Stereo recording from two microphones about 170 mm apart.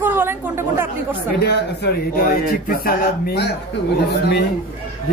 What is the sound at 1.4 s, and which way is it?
A man's voice, 70° left (ahead or behind).